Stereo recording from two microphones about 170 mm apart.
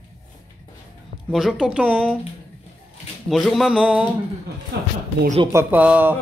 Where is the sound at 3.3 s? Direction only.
Centre (ahead or behind).